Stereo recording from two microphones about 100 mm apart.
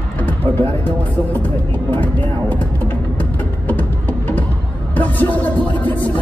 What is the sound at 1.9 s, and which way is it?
Speech, 15° left (ahead or behind).